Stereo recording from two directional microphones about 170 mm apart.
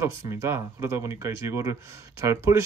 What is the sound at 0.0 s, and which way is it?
Speech, 15° right (ahead or behind).